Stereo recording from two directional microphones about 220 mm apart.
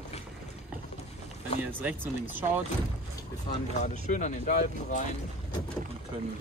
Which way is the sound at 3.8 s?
35° left (ahead or behind).